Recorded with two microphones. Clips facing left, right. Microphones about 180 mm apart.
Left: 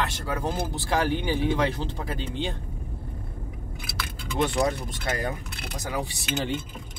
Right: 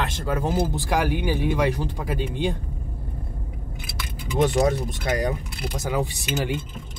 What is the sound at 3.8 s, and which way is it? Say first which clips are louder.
Speech: right 1 dB; 20° right (ahead or behind).